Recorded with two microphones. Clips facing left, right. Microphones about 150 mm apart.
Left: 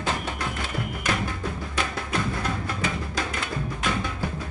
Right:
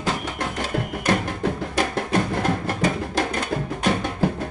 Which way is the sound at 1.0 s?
45° right (ahead or behind).